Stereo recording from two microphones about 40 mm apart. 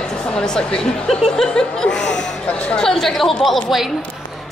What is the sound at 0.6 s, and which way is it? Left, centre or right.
A woman's voice, left.